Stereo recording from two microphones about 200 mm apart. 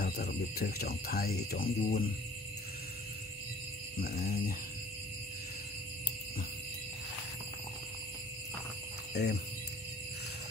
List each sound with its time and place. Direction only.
0.0 s speech: 50° left (ahead or behind)
4.2 s speech: 45° left (ahead or behind)
9.1 s speech: 55° left (ahead or behind)